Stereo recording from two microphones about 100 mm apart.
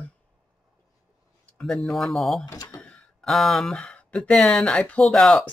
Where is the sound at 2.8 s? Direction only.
5° left (ahead or behind).